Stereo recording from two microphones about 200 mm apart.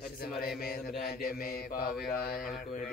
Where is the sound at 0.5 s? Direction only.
50° left (ahead or behind).